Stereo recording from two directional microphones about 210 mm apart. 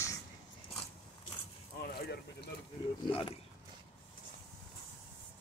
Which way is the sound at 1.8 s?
50° left (ahead or behind).